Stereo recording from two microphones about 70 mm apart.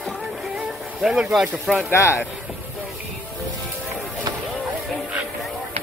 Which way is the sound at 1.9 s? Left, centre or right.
Left.